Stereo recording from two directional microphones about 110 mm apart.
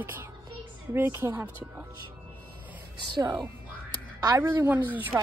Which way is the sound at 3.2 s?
35° right (ahead or behind).